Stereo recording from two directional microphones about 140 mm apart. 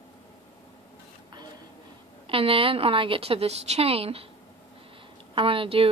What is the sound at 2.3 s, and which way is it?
A woman's voice, 40° right (ahead or behind).